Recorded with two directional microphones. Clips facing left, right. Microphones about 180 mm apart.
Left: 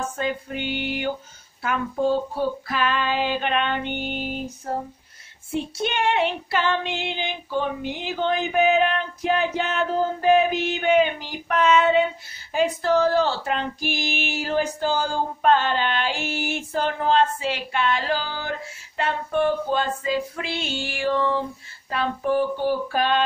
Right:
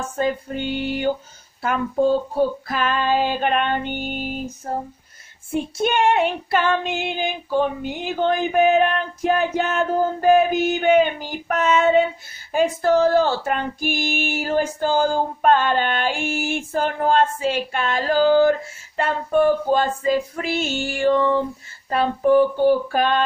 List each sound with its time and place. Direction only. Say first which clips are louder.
0.2 s music: right 7 dB; 40° right (ahead or behind)
2.3 s speech: right 4 dB; 45° right (ahead or behind)
5.5 s speech: right 4 dB; 50° right (ahead or behind)